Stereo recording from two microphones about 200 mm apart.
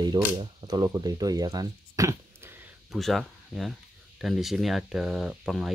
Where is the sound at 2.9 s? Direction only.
Centre (ahead or behind).